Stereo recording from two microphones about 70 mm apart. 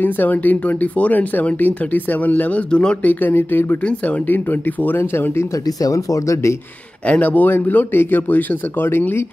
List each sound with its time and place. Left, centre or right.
0.0 s speech: left
3.1 s speech: left
5.8 s speech: left
7.1 s speech: left